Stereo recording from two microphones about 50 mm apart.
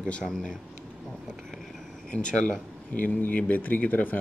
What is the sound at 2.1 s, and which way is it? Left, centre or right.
Speech, centre.